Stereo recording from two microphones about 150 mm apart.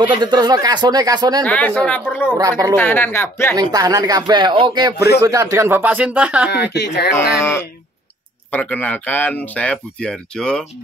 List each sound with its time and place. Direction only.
0.0 s speech: 30° right (ahead or behind)
1.4 s speech: 10° left (ahead or behind)
2.3 s speech: 25° right (ahead or behind)
2.7 s speech: 15° left (ahead or behind)
3.5 s speech: 25° right (ahead or behind); by 6.5 s 10° right (ahead or behind)
6.5 s speech: 90° left
8.5 s speech: 10° left (ahead or behind)